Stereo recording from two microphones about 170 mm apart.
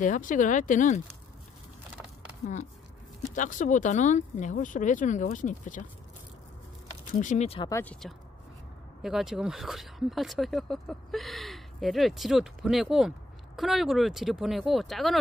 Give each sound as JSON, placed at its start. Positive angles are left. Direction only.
{"t": 0.0, "sound": "speech", "side_deg": 50}
{"t": 3.3, "sound": "speech", "side_deg": 50}
{"t": 7.2, "sound": "speech", "side_deg": 45}
{"t": 7.7, "sound": "speech", "side_deg": 10}
{"t": 9.0, "sound": "speech", "side_deg": 0}